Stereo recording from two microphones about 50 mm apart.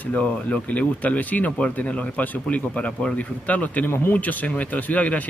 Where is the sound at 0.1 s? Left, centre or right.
Left.